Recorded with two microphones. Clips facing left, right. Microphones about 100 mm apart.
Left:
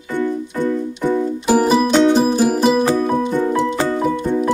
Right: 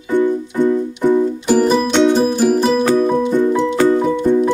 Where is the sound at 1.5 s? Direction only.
10° left (ahead or behind).